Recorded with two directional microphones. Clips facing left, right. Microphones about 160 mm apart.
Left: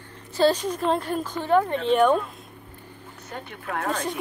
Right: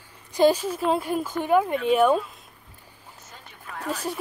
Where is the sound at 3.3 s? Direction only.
65° left (ahead or behind).